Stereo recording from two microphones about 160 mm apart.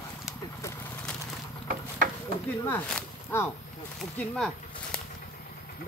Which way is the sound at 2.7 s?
15° left (ahead or behind).